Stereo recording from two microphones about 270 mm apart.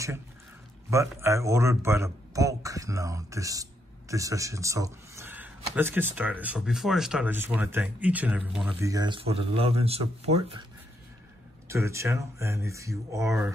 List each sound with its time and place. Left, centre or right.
1.2 s a man's voice: centre
11.7 s a man's voice: centre